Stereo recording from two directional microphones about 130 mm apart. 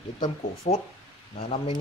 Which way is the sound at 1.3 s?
50° left (ahead or behind).